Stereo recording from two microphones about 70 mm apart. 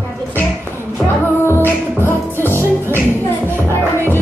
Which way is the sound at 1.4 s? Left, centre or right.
Left.